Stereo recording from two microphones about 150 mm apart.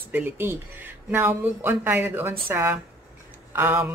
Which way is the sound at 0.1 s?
15° right (ahead or behind).